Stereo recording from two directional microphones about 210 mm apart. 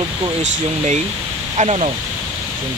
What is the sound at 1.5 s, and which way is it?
Speech, 30° right (ahead or behind).